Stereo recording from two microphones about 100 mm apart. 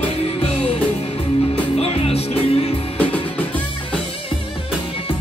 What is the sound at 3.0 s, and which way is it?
Music, 15° left (ahead or behind).